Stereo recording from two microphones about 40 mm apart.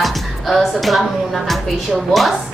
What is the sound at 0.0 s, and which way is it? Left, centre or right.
Speech, centre.